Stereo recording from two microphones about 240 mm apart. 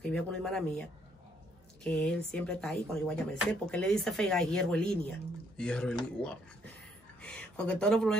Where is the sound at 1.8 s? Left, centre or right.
Centre.